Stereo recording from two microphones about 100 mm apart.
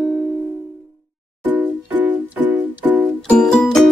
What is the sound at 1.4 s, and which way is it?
Music, 15° right (ahead or behind).